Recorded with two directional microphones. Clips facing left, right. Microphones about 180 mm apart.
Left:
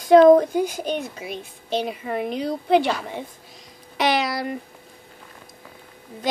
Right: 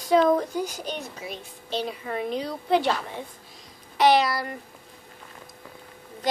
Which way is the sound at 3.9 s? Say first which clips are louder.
Right 2 dB; 75° left (ahead or behind).